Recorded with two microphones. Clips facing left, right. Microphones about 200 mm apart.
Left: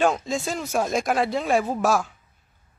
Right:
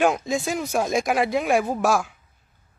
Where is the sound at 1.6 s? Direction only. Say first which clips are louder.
Right 1 dB; centre (ahead or behind).